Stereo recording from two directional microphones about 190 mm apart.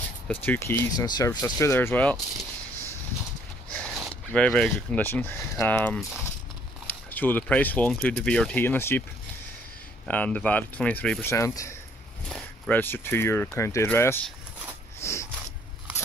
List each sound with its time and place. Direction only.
0.3 s speech: 10° left (ahead or behind)
1.0 s speech: 20° left (ahead or behind)
3.7 s speech: 5° left (ahead or behind)
10.0 s speech: 10° left (ahead or behind)
12.3 s speech: 5° left (ahead or behind)
15.0 s a sound: 15° left (ahead or behind)